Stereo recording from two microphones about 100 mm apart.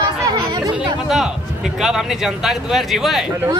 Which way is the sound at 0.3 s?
40° right (ahead or behind).